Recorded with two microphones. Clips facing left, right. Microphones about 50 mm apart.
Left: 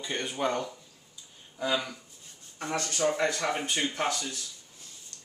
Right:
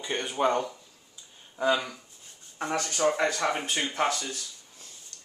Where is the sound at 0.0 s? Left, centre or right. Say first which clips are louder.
Right 4 dB; centre.